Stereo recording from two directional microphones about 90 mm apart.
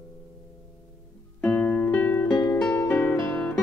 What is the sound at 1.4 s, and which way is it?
Music, 15° left (ahead or behind).